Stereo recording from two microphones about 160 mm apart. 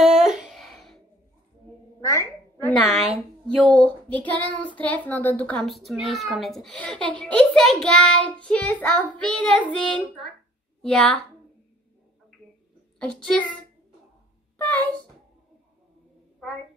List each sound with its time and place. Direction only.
0.0 s a sound: 5° right (ahead or behind)
2.0 s a sound: 20° left (ahead or behind)
3.4 s child singing: 5° left (ahead or behind)
10.8 s a woman's voice: 5° left (ahead or behind)
13.0 s a child's voice: 5° left (ahead or behind)
14.7 s speech: 10° left (ahead or behind)